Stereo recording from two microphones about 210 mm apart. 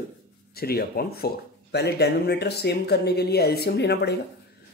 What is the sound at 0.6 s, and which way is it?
Speech, 45° left (ahead or behind).